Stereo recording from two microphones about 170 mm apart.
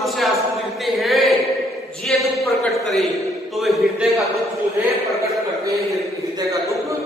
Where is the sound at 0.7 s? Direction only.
Centre (ahead or behind).